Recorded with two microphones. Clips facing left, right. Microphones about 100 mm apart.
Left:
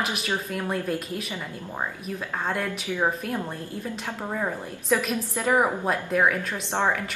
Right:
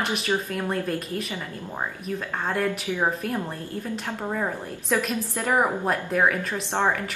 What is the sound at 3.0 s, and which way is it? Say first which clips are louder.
Speech: even; centre (ahead or behind).